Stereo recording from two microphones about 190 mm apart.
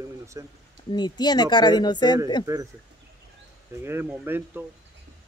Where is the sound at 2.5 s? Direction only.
15° right (ahead or behind).